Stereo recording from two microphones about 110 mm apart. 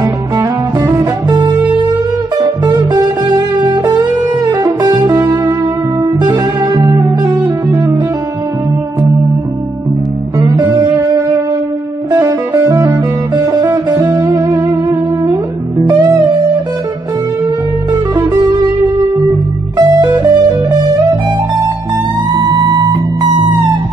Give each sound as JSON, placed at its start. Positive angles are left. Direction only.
{"t": 0.0, "sound": "music", "side_deg": -35}
{"t": 2.6, "sound": "music", "side_deg": -35}
{"t": 10.4, "sound": "music", "side_deg": -35}
{"t": 19.8, "sound": "music", "side_deg": -40}
{"t": 22.4, "sound": "music", "side_deg": -40}